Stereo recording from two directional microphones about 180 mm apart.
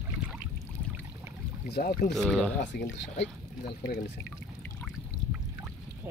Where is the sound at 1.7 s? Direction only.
60° left (ahead or behind).